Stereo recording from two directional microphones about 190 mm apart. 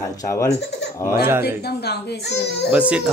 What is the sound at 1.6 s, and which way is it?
A child's voice, 60° left (ahead or behind).